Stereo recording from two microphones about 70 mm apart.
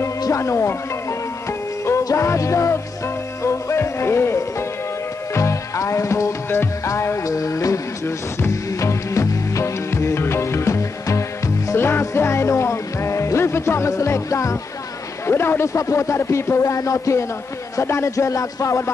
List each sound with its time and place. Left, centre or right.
0.3 s speech: left
2.1 s speech: left
3.4 s music: left
6.5 s music: left
6.9 s music: left
15.2 s speech: left
15.7 s speech: left